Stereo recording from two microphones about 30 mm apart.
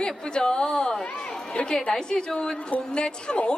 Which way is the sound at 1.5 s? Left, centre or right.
Left.